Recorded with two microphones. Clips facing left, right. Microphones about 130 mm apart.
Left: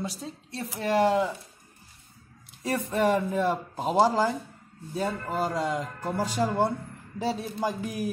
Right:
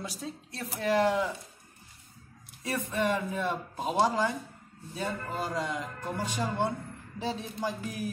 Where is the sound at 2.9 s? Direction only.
35° left (ahead or behind).